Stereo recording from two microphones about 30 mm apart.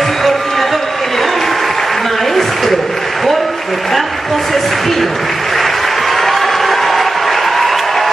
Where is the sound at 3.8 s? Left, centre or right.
Centre.